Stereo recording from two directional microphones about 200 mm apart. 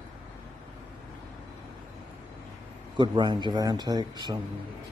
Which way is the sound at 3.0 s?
20° right (ahead or behind).